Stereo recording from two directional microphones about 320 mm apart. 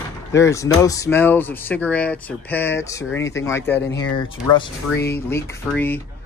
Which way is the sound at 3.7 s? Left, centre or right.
Left.